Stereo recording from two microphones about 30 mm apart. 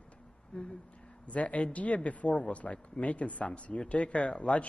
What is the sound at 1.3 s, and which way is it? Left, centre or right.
Speech, left.